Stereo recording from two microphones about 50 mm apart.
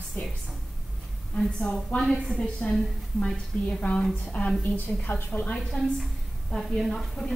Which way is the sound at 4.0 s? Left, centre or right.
Left.